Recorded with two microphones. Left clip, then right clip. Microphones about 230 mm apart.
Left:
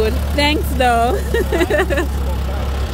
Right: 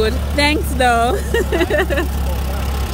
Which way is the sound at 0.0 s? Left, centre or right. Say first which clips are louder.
Right 1 dB; centre.